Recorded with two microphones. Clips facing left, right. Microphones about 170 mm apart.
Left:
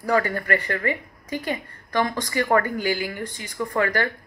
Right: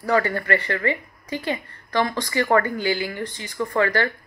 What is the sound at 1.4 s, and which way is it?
Speech, 15° left (ahead or behind).